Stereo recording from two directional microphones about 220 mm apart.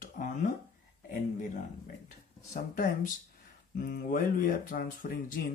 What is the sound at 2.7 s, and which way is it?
Speech, 40° left (ahead or behind).